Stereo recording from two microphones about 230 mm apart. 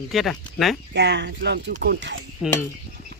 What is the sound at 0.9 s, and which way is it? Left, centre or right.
Speech, right.